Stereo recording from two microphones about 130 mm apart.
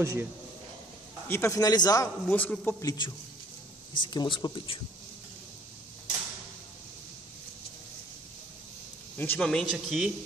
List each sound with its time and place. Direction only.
0.0 s speech: 25° right (ahead or behind)
1.2 s a man's voice: 20° left (ahead or behind)
2.2 s a man's voice: 15° left (ahead or behind)
2.8 s a man's voice: 30° left (ahead or behind)
9.1 s speech: 15° left (ahead or behind)
9.5 s speech: centre (ahead or behind)